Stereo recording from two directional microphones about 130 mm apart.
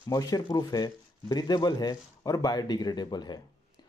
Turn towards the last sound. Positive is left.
turn(degrees=35)  # may be behind; listen again after turning